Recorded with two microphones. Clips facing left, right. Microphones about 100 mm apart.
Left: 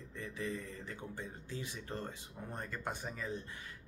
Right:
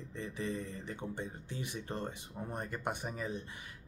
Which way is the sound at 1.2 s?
65° right (ahead or behind).